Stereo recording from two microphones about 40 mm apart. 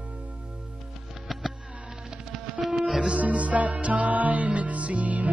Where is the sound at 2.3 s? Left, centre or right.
Centre.